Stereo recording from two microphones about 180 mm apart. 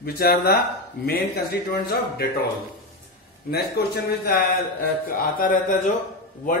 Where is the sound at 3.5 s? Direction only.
60° left (ahead or behind).